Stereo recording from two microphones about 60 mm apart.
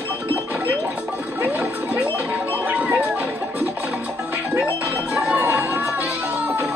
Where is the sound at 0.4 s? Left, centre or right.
Right.